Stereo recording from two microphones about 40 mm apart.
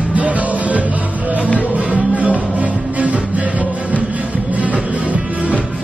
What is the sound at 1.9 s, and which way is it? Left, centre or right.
Music, right.